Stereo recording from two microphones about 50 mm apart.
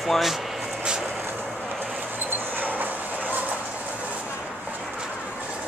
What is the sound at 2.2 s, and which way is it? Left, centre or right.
Vehicle, right.